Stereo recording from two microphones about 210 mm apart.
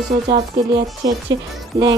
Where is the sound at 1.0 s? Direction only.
15° right (ahead or behind).